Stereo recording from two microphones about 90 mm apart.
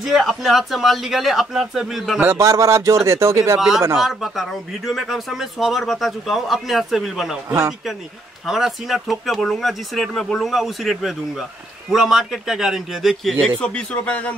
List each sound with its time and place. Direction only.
0.0 s speech: centre (ahead or behind)
2.3 s a man's voice: 35° right (ahead or behind)
3.5 s speech: 5° right (ahead or behind)
8.5 s speech: 5° right (ahead or behind)
13.6 s a man's voice: 10° left (ahead or behind)